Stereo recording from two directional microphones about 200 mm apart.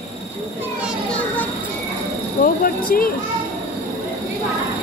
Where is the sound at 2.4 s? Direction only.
45° left (ahead or behind).